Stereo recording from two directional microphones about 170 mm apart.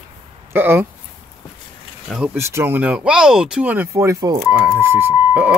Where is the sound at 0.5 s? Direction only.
10° right (ahead or behind).